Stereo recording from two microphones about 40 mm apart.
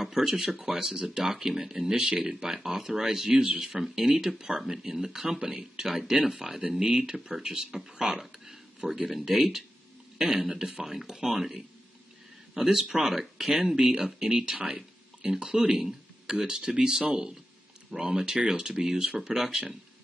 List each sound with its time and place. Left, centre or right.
0.0 s speech: centre
3.3 s speech: right
3.5 s speech: centre